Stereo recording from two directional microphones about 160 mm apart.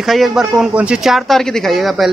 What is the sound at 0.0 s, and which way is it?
Speech, centre (ahead or behind).